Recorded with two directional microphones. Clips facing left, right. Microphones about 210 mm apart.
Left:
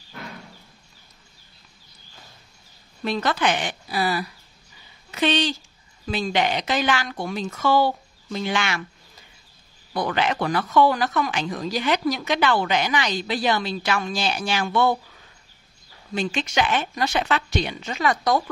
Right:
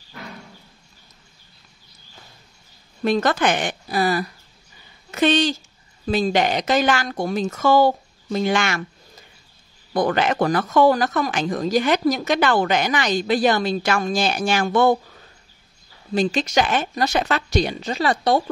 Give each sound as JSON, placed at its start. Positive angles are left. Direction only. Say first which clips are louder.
{"t": 3.0, "sound": "speech", "louder": "right 5 dB", "side_deg": -50}
{"t": 9.9, "sound": "speech", "louder": "right 4 dB", "side_deg": -45}
{"t": 16.1, "sound": "speech", "louder": "right 5 dB", "side_deg": -40}